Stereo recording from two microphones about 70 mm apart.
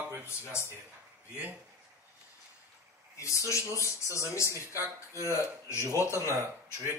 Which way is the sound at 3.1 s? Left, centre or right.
Left.